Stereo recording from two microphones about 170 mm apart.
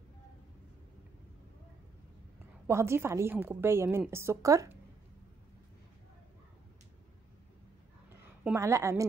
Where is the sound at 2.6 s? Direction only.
15° right (ahead or behind).